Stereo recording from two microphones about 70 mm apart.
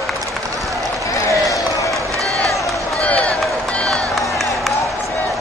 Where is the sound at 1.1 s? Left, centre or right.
Left.